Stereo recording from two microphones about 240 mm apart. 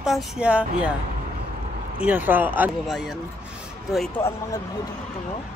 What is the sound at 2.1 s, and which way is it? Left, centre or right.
Speech, centre.